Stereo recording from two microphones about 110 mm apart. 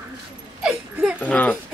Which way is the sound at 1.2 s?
15° left (ahead or behind).